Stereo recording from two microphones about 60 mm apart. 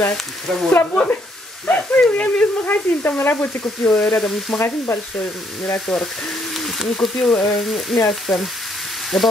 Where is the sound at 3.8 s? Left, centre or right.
Centre.